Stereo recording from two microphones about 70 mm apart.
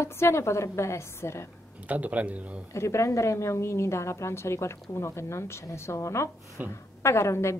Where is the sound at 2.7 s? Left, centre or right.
Left.